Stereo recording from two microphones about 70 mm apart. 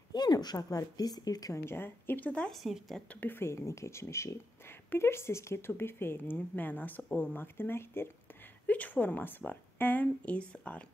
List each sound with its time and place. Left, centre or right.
0.1 s a woman's voice: left
1.6 s a woman's voice: left
2.5 s speech: centre
3.2 s a woman's voice: left
3.5 s a woman's voice: left
8.6 s a woman's voice: left